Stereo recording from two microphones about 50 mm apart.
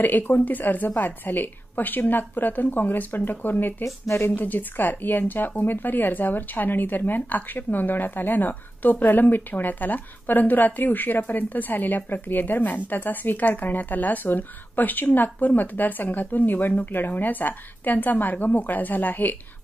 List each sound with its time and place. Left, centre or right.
0.0 s speech: left